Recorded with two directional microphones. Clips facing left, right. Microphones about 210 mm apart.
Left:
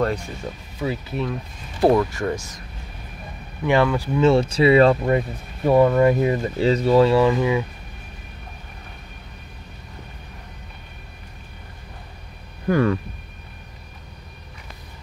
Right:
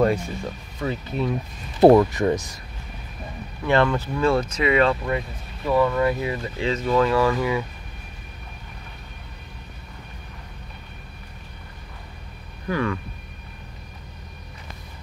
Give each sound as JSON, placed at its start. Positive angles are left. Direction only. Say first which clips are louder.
{"t": 0.7, "sound": "speech", "louder": "left 1 dB", "side_deg": 5}
{"t": 1.8, "sound": "speech", "louder": "right 4 dB", "side_deg": -25}
{"t": 3.6, "sound": "speech", "louder": "left 1 dB", "side_deg": 10}
{"t": 4.2, "sound": "speech", "louder": "left 6 dB", "side_deg": 25}
{"t": 12.6, "sound": "speech", "louder": "left 6 dB", "side_deg": 45}